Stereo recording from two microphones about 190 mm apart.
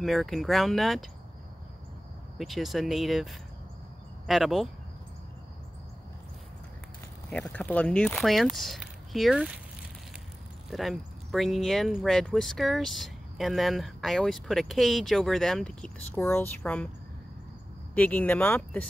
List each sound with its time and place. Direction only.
0.0 s speech: centre (ahead or behind)
2.3 s speech: centre (ahead or behind)
7.2 s speech: 5° left (ahead or behind)
10.7 s speech: centre (ahead or behind)
17.9 s speech: 5° left (ahead or behind)